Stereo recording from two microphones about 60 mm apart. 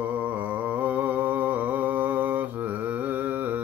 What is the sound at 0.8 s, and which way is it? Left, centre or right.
Mantra, right.